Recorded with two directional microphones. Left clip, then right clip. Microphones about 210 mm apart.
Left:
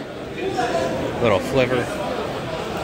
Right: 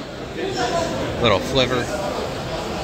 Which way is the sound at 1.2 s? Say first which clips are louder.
Right 1 dB; 10° left (ahead or behind).